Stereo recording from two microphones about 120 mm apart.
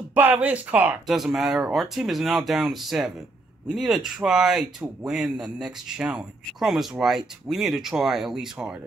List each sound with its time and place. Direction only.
0.1 s speech: 15° right (ahead or behind)